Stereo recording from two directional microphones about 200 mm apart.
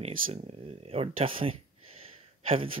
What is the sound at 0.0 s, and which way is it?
Speech, 30° right (ahead or behind).